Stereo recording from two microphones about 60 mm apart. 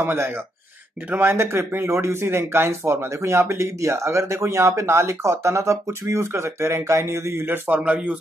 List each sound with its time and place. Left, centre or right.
0.0 s speech: right
1.3 s speech: right
7.8 s speech: right